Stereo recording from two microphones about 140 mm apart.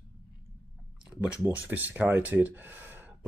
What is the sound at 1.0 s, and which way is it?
Speech, 10° right (ahead or behind).